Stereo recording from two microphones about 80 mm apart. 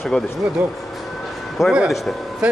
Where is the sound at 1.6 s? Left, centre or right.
Left.